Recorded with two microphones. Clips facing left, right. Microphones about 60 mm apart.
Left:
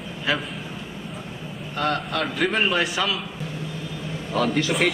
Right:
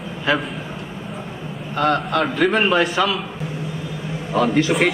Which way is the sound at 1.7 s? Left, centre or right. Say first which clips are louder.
Right 6 dB; centre.